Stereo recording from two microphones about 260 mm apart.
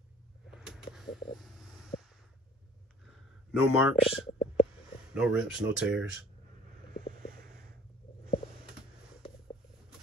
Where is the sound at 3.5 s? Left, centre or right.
Centre.